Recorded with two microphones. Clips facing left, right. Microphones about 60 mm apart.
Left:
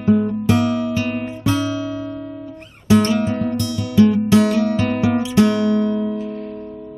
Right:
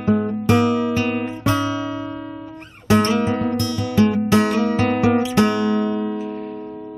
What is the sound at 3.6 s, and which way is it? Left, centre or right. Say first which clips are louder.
Music: left 6 dB; right.